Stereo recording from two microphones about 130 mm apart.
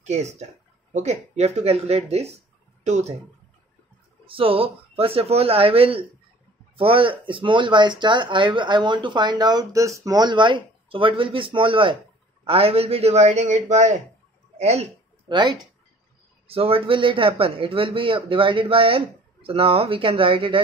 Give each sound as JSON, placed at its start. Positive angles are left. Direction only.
{"t": 0.0, "sound": "a man's voice", "side_deg": -60}
{"t": 4.3, "sound": "a man's voice", "side_deg": -45}
{"t": 15.2, "sound": "speech", "side_deg": -35}
{"t": 16.4, "sound": "speech", "side_deg": -45}